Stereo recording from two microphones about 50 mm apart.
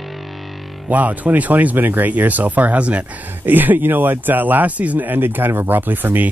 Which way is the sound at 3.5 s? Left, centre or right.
Right.